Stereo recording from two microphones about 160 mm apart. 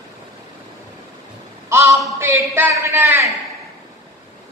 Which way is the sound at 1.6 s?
15° right (ahead or behind).